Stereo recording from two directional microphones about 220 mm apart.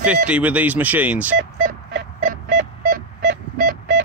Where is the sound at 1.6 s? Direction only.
45° right (ahead or behind).